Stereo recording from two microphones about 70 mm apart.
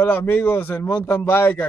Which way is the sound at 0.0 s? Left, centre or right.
Left.